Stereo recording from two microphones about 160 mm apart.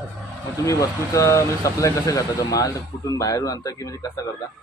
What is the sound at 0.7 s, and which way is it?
Speech, 20° left (ahead or behind).